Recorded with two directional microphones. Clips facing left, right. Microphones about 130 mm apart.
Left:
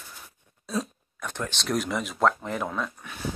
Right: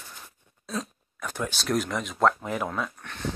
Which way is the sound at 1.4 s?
5° right (ahead or behind).